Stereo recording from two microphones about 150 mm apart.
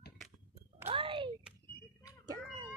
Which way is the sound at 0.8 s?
35° right (ahead or behind).